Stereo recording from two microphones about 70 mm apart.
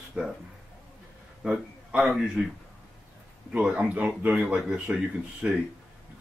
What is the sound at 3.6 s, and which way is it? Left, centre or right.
Speech, right.